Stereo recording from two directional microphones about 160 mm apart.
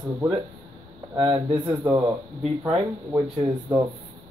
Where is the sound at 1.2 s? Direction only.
30° right (ahead or behind).